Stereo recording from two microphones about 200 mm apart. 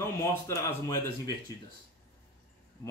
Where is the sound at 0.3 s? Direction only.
15° left (ahead or behind).